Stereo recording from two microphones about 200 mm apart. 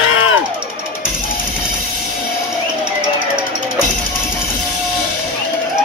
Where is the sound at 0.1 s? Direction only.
90° left.